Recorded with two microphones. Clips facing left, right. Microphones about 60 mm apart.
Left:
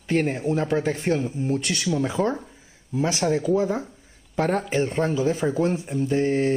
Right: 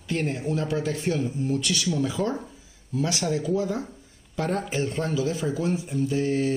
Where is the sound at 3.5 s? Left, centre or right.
Left.